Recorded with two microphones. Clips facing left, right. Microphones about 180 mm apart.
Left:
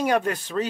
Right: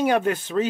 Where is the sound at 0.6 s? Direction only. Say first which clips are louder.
Right 3 dB; 20° right (ahead or behind).